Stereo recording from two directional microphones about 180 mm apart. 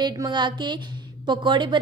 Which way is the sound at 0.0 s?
20° right (ahead or behind).